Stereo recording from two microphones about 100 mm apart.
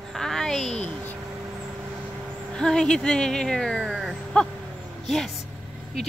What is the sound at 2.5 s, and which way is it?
Speech, 5° left (ahead or behind).